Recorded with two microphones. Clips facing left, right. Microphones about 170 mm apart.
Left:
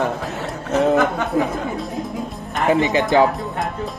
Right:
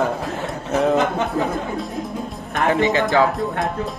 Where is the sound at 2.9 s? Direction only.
20° left (ahead or behind).